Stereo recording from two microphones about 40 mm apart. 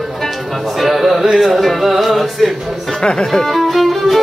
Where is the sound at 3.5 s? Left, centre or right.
Centre.